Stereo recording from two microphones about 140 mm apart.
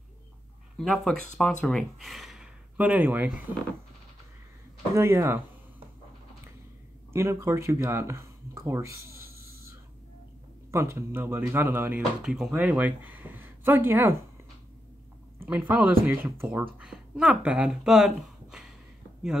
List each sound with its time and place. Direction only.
0.7 s speech: centre (ahead or behind)
4.9 s speech: 20° right (ahead or behind)
7.1 s speech: 20° right (ahead or behind)
10.7 s speech: 20° right (ahead or behind)
12.2 s speech: 5° right (ahead or behind)
15.4 s speech: 10° right (ahead or behind)